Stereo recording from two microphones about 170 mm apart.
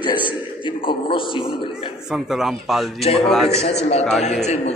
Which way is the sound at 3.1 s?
35° left (ahead or behind).